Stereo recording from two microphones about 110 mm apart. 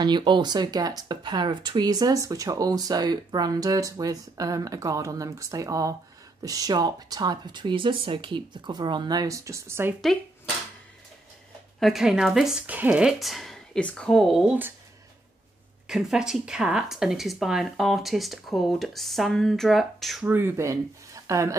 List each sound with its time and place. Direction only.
0.0 s speech: 45° right (ahead or behind); by 9.9 s 20° right (ahead or behind)
11.8 s speech: 5° right (ahead or behind)
15.9 s speech: 5° right (ahead or behind)
20.2 s speech: 20° right (ahead or behind)